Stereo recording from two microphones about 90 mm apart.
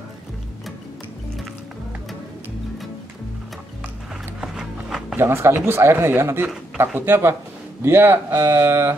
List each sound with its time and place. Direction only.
4.4 s music: 5° right (ahead or behind)
5.1 s speech: 25° right (ahead or behind)
8.3 s mantra: 35° right (ahead or behind)